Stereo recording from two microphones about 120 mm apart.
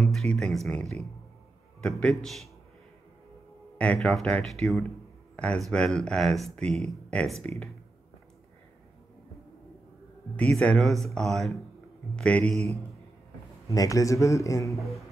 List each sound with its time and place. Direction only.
0.0 s speech: 5° left (ahead or behind)
3.7 s speech: 10° left (ahead or behind)
5.3 s a sound: 10° left (ahead or behind)
5.7 s speech: 5° left (ahead or behind)
10.6 s speech: 5° left (ahead or behind)
12.4 s a man's voice: 60° right (ahead or behind)
13.7 s a man's voice: 30° left (ahead or behind)
14.8 s a sound: centre (ahead or behind)